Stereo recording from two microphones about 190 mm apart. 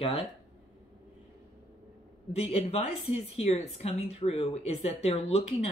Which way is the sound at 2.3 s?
35° left (ahead or behind).